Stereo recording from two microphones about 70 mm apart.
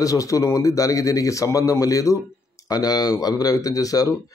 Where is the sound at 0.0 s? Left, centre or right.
Left.